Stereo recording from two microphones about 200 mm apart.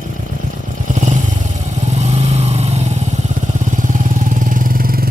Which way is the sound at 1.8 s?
35° right (ahead or behind).